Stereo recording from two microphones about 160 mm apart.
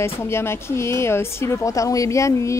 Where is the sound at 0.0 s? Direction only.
15° left (ahead or behind).